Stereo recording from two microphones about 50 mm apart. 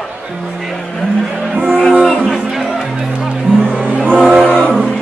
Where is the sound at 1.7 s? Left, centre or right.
Centre.